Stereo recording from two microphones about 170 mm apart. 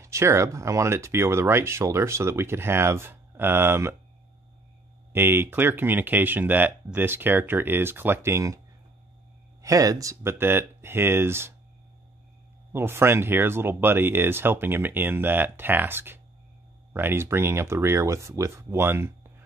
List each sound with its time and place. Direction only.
0.0 s speech: 15° right (ahead or behind)
5.1 s speech: 15° right (ahead or behind)
9.6 s speech: 20° right (ahead or behind)
12.7 s speech: 15° right (ahead or behind)